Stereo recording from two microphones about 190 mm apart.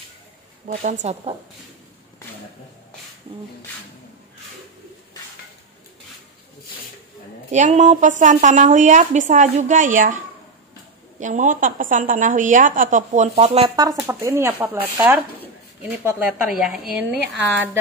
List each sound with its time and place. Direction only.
0.7 s a woman's voice: 40° right (ahead or behind)
7.5 s a woman's voice: 40° right (ahead or behind)
11.1 s a woman's voice: 40° right (ahead or behind)
13.7 s speech: 20° right (ahead or behind)